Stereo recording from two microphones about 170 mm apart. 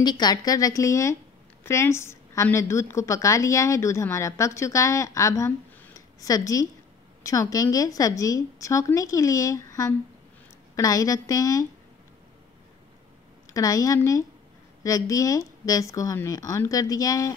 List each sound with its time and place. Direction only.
0.0 s a woman's voice: 25° left (ahead or behind)
13.5 s a woman's voice: 20° left (ahead or behind)